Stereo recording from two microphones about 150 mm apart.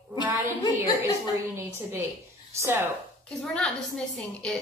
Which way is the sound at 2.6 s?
15° right (ahead or behind).